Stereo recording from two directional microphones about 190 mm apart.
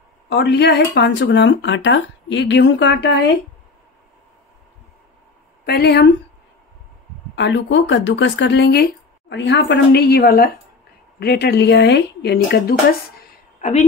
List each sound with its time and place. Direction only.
0.3 s speech: 60° left (ahead or behind)
5.7 s speech: 60° left (ahead or behind)
7.3 s speech: 70° left (ahead or behind)
13.6 s speech: 40° left (ahead or behind)